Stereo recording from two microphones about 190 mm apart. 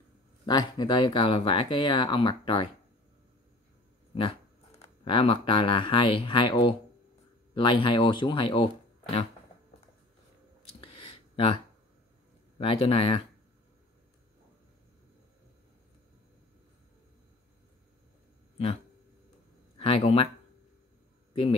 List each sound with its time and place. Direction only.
0.5 s speech: 20° left (ahead or behind)
4.1 s speech: 30° left (ahead or behind)
10.8 s a sound: 30° left (ahead or behind)
12.5 s speech: 30° left (ahead or behind)
19.8 s speech: 30° left (ahead or behind)
21.3 s a sound: 30° left (ahead or behind)